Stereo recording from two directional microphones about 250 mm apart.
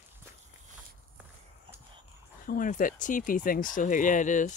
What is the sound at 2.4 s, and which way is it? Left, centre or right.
Speech, left.